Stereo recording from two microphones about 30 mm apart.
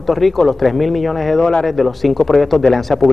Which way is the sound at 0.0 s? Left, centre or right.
Centre.